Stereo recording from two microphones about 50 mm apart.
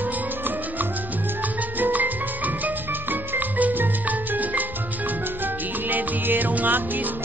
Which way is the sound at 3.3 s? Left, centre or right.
Right.